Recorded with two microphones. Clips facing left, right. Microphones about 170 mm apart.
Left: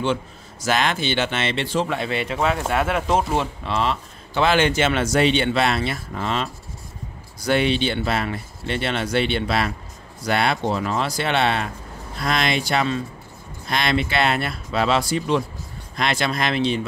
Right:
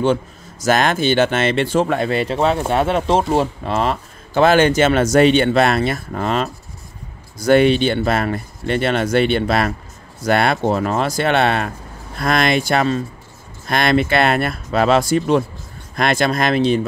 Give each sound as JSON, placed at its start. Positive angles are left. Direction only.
{"t": 0.0, "sound": "speech", "side_deg": -45}
{"t": 3.6, "sound": "speech", "side_deg": -45}